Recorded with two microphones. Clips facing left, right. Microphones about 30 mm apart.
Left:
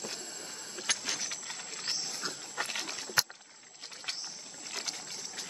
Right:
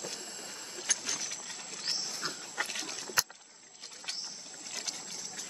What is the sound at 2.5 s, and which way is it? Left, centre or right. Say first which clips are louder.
Dog: left 2 dB; centre.